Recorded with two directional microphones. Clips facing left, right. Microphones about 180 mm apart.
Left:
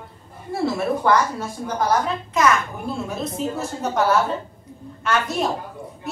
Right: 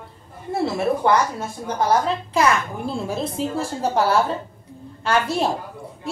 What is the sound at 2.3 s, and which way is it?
A woman's voice, 30° right (ahead or behind).